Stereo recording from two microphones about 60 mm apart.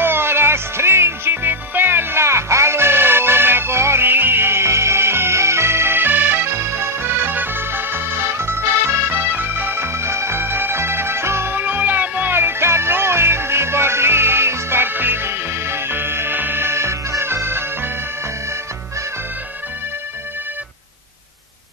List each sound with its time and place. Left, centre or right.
0.0 s music: right
7.1 s music: right